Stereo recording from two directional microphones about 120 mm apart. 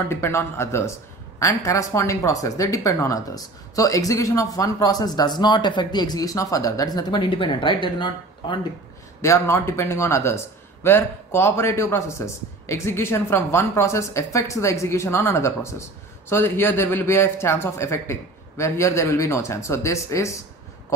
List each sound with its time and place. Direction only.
0.1 s a woman's voice: 20° left (ahead or behind); by 8.5 s 40° left (ahead or behind)
9.2 s a woman's voice: 25° left (ahead or behind)